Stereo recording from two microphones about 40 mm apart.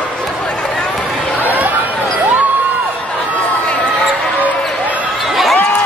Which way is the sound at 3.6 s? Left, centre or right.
Left.